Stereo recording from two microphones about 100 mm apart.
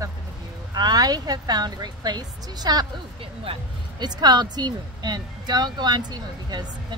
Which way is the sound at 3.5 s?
65° right (ahead or behind).